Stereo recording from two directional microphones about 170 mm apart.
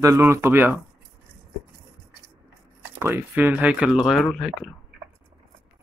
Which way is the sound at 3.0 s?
10° right (ahead or behind).